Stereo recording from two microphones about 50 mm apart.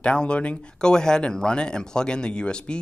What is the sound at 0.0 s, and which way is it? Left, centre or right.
Speech, left.